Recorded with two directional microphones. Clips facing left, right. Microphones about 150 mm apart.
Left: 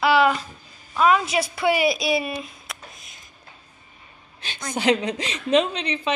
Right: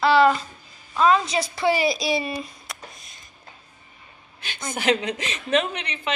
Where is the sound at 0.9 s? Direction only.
5° left (ahead or behind).